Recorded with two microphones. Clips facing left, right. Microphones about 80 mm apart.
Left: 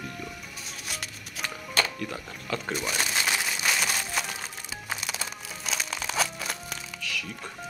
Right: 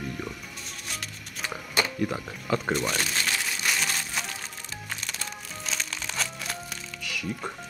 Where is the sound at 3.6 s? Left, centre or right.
Centre.